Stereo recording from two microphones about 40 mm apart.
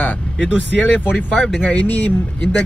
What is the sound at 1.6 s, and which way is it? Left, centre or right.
Speech, left.